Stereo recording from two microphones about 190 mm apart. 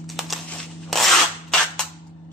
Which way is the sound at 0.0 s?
Centre (ahead or behind).